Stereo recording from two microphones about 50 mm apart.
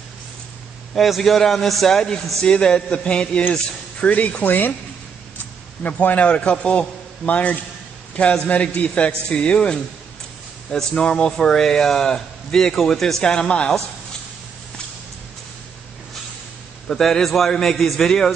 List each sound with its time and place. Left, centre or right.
0.9 s a man's voice: centre; by 4.7 s left
5.9 s a man's voice: left; by 13.7 s centre
16.8 s a man's voice: centre